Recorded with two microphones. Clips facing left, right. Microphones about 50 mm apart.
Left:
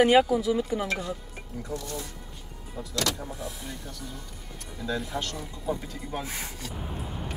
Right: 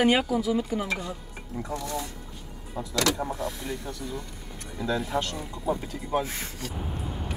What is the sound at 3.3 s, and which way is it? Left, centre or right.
Speech, right.